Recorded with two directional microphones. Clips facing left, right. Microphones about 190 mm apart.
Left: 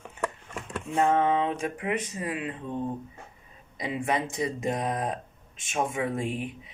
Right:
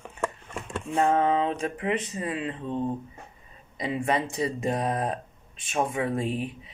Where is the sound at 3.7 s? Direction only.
15° left (ahead or behind).